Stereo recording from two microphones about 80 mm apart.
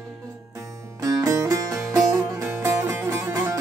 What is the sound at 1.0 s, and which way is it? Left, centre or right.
Music, right.